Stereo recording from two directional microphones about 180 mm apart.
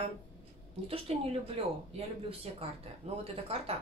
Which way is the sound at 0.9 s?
30° right (ahead or behind).